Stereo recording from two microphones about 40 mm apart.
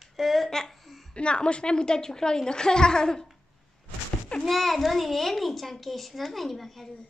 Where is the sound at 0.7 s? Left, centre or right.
Centre.